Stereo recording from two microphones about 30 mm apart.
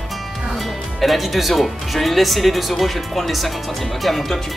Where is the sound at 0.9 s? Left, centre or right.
Centre.